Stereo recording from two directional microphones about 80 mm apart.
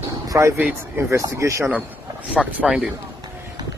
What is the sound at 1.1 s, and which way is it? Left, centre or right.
Speech, right.